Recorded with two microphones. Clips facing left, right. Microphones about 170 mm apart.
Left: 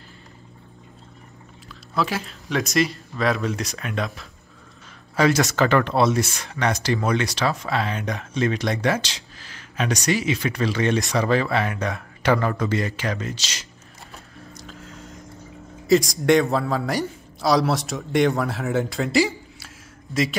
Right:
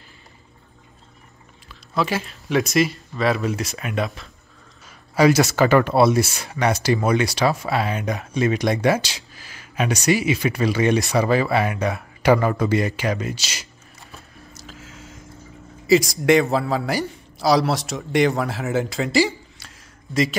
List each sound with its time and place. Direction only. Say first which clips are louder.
2.0 s a man's voice: right 2 dB; centre (ahead or behind)
14.5 s squish: left 1 dB; 5° right (ahead or behind)
15.9 s a man's voice: right 1 dB; centre (ahead or behind)